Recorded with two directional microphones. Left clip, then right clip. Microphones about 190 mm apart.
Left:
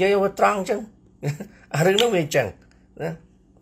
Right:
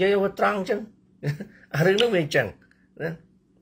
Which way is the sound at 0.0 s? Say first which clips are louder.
Left 3 dB; 15° right (ahead or behind).